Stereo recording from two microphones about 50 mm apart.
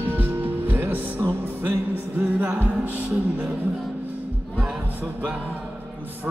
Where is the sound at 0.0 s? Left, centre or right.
Right.